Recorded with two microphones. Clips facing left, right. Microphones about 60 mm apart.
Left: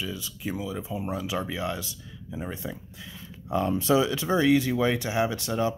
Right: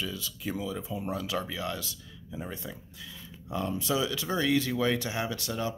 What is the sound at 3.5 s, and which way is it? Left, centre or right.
Speech, left.